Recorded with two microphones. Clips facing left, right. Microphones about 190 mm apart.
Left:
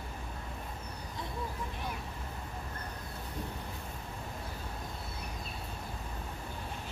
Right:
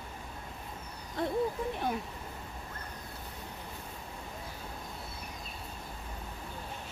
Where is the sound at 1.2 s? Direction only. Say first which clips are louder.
Right 11 dB; 60° right (ahead or behind).